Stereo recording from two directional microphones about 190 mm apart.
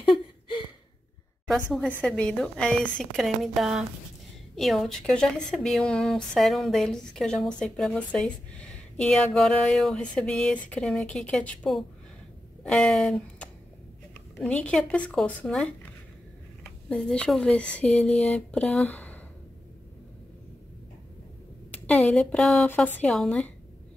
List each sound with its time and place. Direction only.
0.0 s a sound: 25° left (ahead or behind)
2.0 s a woman's voice: 5° left (ahead or behind)
21.7 s a woman's voice: 5° left (ahead or behind)